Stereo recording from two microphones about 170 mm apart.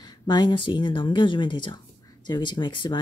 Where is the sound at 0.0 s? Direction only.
25° left (ahead or behind).